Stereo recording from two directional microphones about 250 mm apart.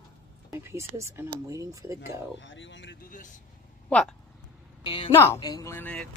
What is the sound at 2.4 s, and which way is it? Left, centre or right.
Speech, left.